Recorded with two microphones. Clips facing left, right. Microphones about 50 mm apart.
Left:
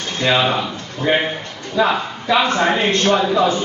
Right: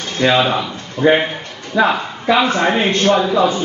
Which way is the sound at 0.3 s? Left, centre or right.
Centre.